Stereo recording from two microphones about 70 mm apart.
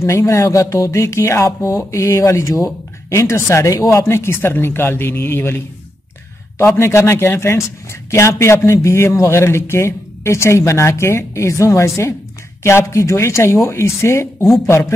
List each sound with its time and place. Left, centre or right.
0.0 s speech: left
6.8 s speech: left